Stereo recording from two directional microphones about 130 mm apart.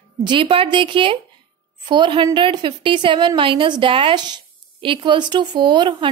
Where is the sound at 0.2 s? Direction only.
35° right (ahead or behind).